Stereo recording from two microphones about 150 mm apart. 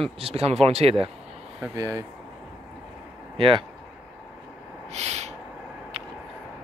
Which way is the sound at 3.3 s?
35° right (ahead or behind).